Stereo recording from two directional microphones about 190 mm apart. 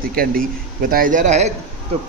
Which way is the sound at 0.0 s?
50° right (ahead or behind).